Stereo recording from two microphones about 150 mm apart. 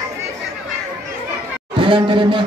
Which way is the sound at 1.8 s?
35° right (ahead or behind).